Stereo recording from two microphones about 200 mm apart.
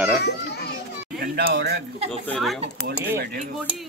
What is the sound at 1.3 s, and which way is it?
Speech, 60° right (ahead or behind).